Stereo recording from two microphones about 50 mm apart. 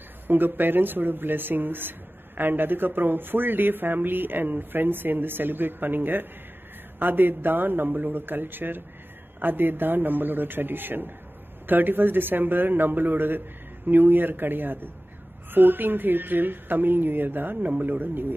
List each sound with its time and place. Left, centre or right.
0.3 s speech: right